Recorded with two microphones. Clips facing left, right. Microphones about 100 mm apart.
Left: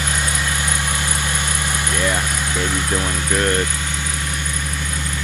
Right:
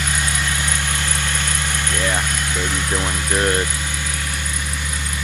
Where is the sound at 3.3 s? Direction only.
15° right (ahead or behind).